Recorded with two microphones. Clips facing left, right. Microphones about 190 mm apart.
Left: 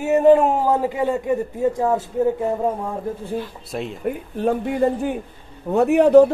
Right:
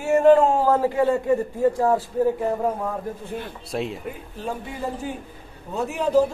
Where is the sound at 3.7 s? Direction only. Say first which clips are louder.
Right 4 dB; centre (ahead or behind).